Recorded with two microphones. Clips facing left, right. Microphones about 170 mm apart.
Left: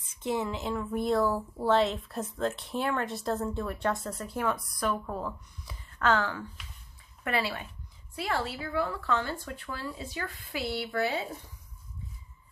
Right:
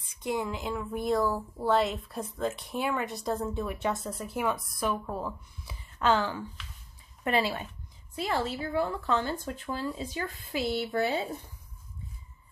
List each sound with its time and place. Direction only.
0.2 s speech: 5° right (ahead or behind)
5.9 s speech: 20° right (ahead or behind)